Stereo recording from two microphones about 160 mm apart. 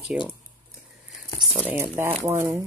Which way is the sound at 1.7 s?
15° right (ahead or behind).